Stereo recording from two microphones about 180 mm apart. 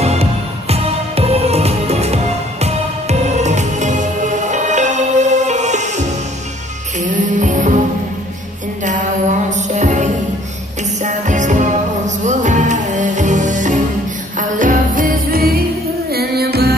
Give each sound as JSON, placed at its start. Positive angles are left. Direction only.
{"t": 0.0, "sound": "music", "side_deg": -35}
{"t": 8.8, "sound": "music", "side_deg": -45}
{"t": 11.0, "sound": "jingle bell", "side_deg": -45}
{"t": 12.3, "sound": "music", "side_deg": -40}